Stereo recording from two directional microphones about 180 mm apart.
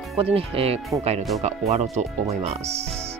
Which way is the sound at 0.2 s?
30° right (ahead or behind).